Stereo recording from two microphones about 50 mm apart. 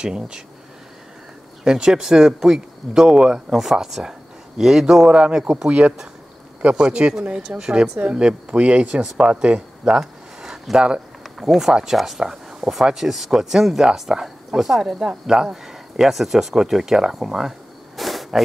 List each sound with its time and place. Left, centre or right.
0.0 s speech: centre
1.6 s speech: centre
5.7 s speech: right
9.9 s a sound: centre
11.3 s speech: centre